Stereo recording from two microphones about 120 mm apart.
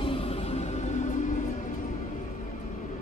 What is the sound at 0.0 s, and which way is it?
Music, 55° left (ahead or behind).